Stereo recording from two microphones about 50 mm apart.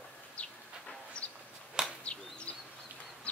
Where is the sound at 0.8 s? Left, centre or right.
Left.